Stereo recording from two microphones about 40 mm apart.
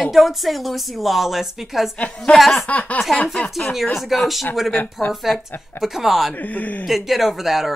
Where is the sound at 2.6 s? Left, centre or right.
Left.